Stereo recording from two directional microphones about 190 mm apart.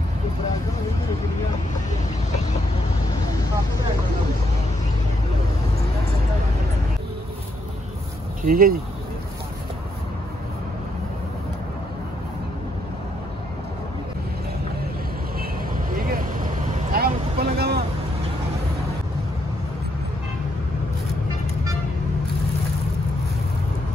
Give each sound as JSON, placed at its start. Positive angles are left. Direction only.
{"t": 8.4, "sound": "speech", "side_deg": -50}
{"t": 15.9, "sound": "vehicle", "side_deg": -50}